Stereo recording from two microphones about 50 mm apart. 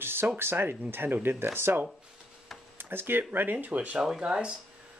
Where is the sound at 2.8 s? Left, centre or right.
Right.